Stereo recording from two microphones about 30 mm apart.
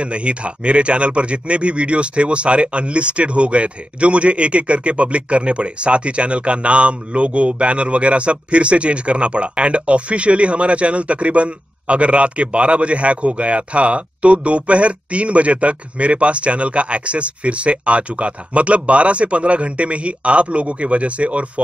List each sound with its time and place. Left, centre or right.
0.0 s speech: right